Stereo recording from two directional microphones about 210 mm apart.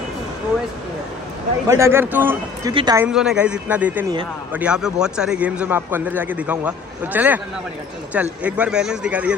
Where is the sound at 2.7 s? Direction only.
25° right (ahead or behind).